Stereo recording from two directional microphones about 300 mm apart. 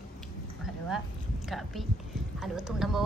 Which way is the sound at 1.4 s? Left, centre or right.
Centre.